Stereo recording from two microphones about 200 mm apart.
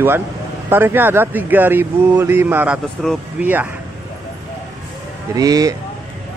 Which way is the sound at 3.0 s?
5° left (ahead or behind).